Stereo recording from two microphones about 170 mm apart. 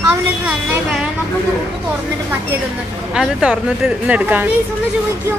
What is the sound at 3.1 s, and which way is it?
Speech, 5° right (ahead or behind).